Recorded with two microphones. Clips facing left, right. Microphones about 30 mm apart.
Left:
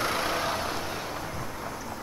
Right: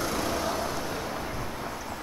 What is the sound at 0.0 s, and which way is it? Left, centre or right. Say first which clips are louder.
Vehicle: left 1 dB; left.